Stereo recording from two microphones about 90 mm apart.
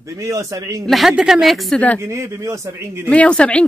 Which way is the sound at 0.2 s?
40° right (ahead or behind).